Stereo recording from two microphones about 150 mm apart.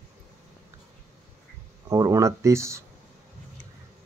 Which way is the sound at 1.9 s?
20° right (ahead or behind).